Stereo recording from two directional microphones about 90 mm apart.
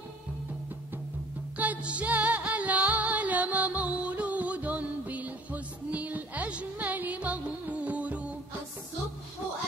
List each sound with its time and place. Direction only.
1.6 s music: 15° right (ahead or behind)